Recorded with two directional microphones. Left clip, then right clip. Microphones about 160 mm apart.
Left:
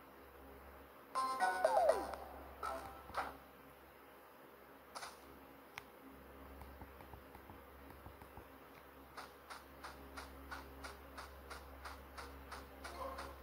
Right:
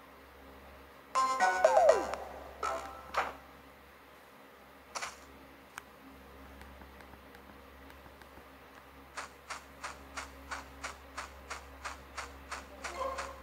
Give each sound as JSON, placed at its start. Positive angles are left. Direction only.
{"t": 1.1, "sound": "music", "side_deg": -30}
{"t": 4.9, "sound": "a sound", "side_deg": -30}
{"t": 9.1, "sound": "printer", "side_deg": -30}